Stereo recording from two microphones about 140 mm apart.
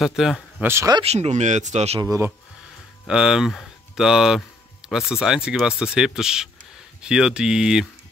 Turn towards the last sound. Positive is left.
turn(degrees=-5)  # may be behind; listen again after turning